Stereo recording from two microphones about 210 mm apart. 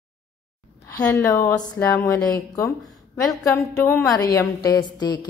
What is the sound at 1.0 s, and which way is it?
A woman's voice, 15° left (ahead or behind).